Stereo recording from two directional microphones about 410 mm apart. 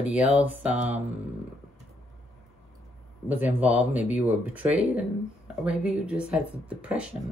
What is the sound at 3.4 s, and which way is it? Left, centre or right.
Speech, centre.